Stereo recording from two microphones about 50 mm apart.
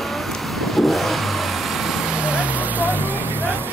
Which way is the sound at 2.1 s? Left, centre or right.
Right.